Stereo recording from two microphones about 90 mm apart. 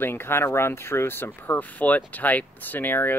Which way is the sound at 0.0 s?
25° left (ahead or behind).